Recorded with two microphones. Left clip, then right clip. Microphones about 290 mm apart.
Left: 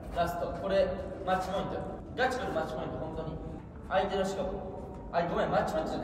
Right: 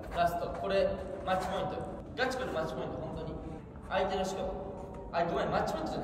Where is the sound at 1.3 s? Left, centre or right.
Centre.